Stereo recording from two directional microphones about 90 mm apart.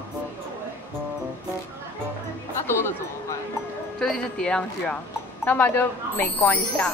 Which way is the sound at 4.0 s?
5° left (ahead or behind).